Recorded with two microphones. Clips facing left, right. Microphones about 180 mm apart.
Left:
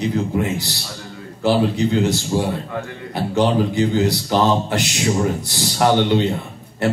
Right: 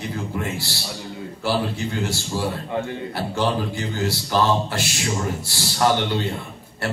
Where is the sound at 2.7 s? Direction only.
20° right (ahead or behind).